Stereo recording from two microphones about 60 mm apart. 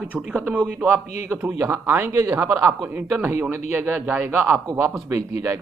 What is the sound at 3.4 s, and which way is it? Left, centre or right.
A man's voice, right.